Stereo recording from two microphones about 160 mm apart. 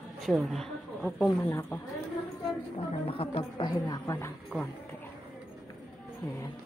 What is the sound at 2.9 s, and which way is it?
A woman's voice, 35° left (ahead or behind).